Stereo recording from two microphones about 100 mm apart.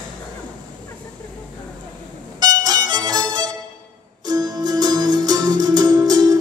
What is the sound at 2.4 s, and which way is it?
Music, 45° right (ahead or behind).